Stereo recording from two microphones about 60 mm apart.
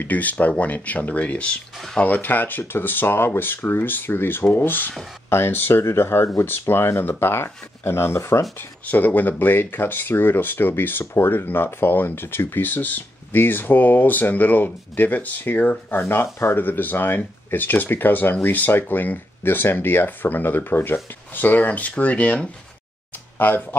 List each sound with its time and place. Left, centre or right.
0.0 s speech: left
8.5 s speech: left
23.3 s speech: left